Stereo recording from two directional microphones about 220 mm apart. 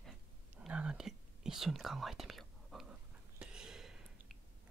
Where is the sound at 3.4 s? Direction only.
5° right (ahead or behind).